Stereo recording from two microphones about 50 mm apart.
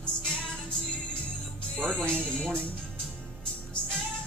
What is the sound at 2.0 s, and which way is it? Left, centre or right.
Music, centre.